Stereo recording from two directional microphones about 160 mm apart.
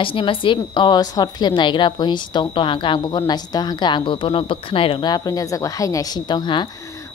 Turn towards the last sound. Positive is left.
turn(degrees=30)  # may be behind; listen again after turning